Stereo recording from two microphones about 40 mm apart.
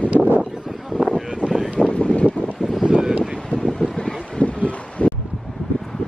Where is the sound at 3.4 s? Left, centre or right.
Centre.